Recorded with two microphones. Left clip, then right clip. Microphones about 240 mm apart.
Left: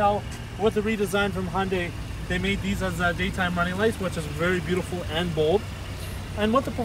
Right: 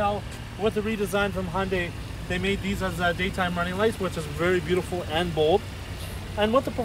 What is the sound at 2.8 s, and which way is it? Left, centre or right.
Speech, right.